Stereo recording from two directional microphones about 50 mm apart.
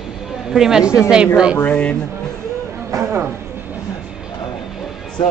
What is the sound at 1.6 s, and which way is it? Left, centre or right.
Speech, left.